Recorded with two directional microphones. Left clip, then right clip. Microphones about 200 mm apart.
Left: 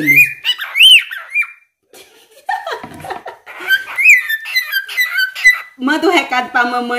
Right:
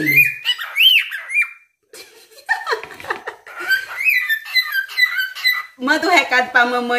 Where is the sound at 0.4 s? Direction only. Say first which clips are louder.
Left 5 dB; 20° left (ahead or behind).